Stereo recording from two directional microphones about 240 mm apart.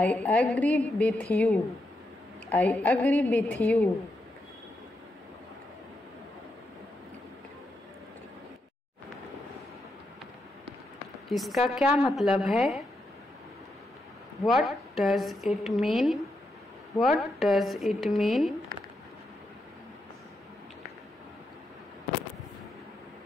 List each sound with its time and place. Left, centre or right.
0.0 s a woman's voice: centre
11.2 s a woman's voice: centre
14.4 s a woman's voice: centre